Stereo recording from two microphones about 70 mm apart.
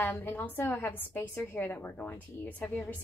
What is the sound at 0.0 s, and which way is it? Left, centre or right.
A woman's voice, left.